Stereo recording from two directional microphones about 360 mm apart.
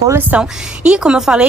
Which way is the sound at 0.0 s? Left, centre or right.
Centre.